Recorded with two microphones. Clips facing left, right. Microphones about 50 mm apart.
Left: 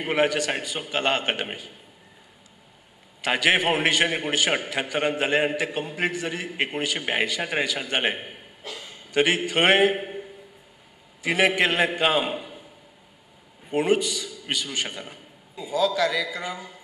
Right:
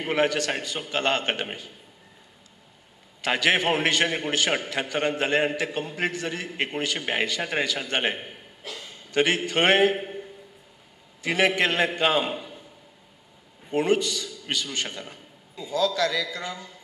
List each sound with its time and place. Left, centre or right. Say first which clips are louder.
0.0 s a man's voice: left 1 dB; centre
3.2 s a man's voice: left 1 dB; centre
8.6 s a sound: left 1 dB; centre
9.1 s a man's voice: left 1 dB; centre
13.7 s a man's voice: left 1 dB; centre